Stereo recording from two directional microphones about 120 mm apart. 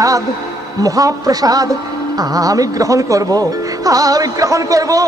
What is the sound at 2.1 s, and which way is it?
Music, 30° right (ahead or behind).